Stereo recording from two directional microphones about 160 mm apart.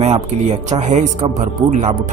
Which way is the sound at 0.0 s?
45° right (ahead or behind).